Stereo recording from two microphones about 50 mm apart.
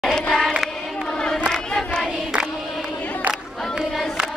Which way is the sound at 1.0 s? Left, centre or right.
Centre.